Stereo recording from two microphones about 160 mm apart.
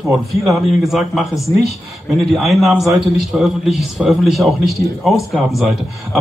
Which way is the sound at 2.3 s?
Centre (ahead or behind).